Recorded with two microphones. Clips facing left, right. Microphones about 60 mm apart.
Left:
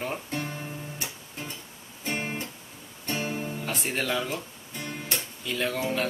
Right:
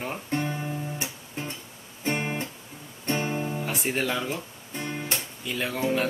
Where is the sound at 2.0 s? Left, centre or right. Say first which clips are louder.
Right 3 dB; right.